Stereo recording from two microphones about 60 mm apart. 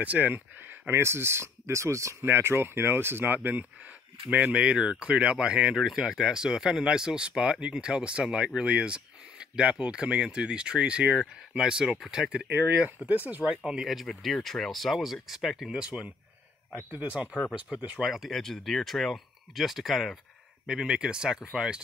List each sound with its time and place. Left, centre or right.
0.0 s speech: right
2.2 s speech: right
3.4 s speech: right
12.4 s speech: right
13.8 s speech: centre
15.8 s speech: centre
18.0 s speech: centre
20.6 s speech: centre